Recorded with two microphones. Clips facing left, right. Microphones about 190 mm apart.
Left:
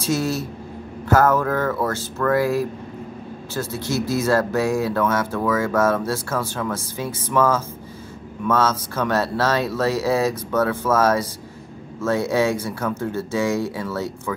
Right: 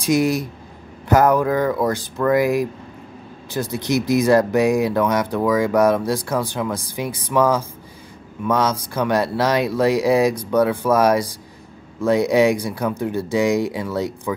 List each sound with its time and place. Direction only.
0.0 s speech: 15° right (ahead or behind)